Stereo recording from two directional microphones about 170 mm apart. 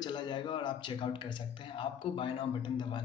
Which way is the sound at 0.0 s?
25° left (ahead or behind).